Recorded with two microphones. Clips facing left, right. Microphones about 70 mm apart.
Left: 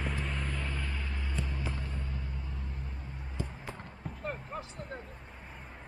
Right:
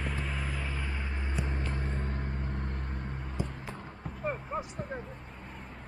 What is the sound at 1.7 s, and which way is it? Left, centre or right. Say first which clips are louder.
Vehicle: right 5 dB; right.